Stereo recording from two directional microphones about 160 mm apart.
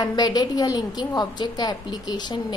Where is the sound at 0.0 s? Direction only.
25° left (ahead or behind).